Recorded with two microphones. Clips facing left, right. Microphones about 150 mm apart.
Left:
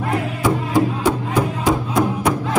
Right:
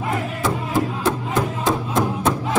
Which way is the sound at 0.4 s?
15° left (ahead or behind).